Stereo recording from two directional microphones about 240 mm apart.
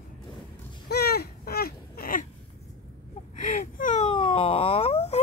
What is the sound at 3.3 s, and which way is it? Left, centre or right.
Speech, left.